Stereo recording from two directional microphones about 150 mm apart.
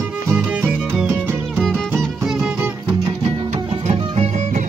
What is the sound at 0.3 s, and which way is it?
Music, 10° right (ahead or behind).